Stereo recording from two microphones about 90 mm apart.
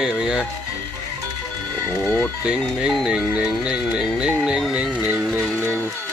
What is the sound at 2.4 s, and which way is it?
Music, 10° right (ahead or behind).